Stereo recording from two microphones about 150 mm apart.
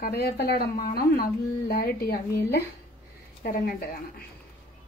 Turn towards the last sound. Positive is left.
turn(degrees=90)